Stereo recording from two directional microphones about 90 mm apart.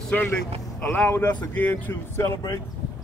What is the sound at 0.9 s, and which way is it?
Speech, 20° left (ahead or behind).